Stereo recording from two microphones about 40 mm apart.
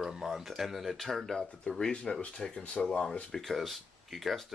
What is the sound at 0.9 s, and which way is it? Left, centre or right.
Speech, centre.